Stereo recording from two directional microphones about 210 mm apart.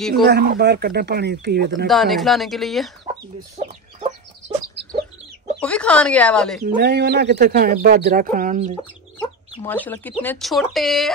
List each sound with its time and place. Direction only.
0.2 s speech: 50° right (ahead or behind)
1.9 s speech: centre (ahead or behind)
3.5 s chicken: 30° right (ahead or behind)
5.6 s speech: 5° left (ahead or behind)
6.6 s speech: 50° right (ahead or behind)
9.6 s speech: 10° left (ahead or behind)